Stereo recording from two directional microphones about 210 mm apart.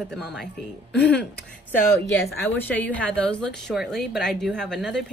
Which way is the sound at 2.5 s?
10° left (ahead or behind).